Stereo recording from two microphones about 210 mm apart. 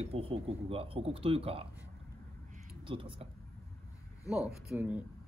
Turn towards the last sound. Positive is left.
turn(degrees=-5)  # may be behind; listen again after turning